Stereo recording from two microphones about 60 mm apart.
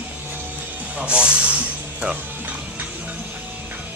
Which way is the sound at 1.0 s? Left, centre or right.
Centre.